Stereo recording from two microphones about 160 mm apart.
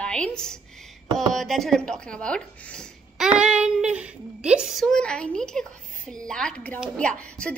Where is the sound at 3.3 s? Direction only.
5° right (ahead or behind).